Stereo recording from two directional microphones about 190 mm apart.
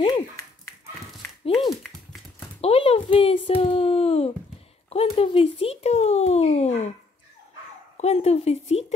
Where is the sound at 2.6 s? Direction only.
30° left (ahead or behind).